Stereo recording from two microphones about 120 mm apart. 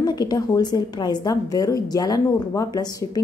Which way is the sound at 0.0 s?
35° left (ahead or behind).